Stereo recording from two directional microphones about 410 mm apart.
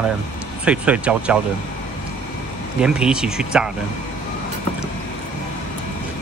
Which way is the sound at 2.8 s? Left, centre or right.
Centre.